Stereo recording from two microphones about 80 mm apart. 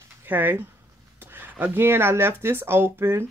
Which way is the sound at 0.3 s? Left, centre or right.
Right.